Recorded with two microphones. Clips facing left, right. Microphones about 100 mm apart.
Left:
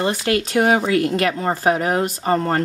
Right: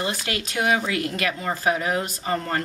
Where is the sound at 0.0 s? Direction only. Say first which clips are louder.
Left 8 dB; 35° left (ahead or behind).